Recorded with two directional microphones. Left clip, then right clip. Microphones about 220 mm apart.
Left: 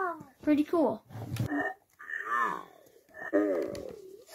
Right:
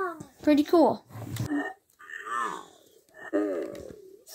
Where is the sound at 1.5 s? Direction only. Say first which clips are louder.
Right 1 dB; 15° left (ahead or behind).